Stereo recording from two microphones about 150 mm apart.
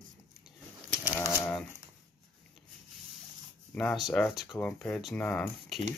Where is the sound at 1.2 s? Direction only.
15° left (ahead or behind).